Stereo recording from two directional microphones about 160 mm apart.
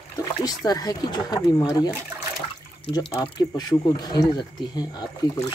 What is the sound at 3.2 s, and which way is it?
Speech, 25° left (ahead or behind).